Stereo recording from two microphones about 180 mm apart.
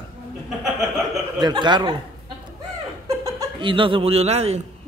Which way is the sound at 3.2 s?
25° right (ahead or behind).